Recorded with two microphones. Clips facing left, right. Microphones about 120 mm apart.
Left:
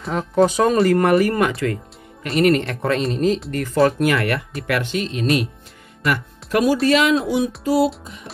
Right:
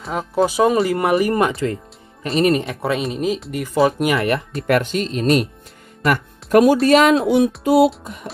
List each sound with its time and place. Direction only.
0.0 s speech: 5° right (ahead or behind); by 2.7 s 25° right (ahead or behind)
2.7 s speech: 5° right (ahead or behind)
4.6 s speech: 40° right (ahead or behind)
5.2 s speech: centre (ahead or behind)
6.0 s speech: 50° right (ahead or behind)
7.2 s speech: 60° right (ahead or behind)